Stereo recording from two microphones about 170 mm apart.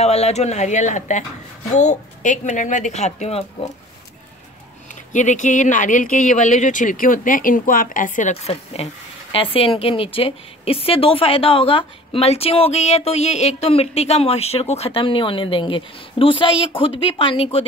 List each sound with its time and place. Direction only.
0.0 s speech: 40° left (ahead or behind)
5.1 s a woman's voice: 45° left (ahead or behind)